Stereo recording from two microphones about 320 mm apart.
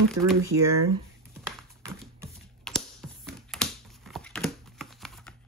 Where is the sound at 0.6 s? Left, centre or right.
Right.